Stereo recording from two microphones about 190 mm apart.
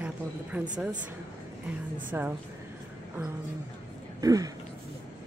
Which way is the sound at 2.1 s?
10° right (ahead or behind).